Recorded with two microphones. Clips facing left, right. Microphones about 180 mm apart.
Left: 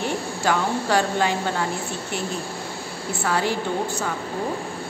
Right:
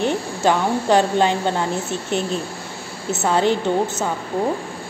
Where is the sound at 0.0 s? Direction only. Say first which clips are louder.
Right 5 dB; 20° right (ahead or behind).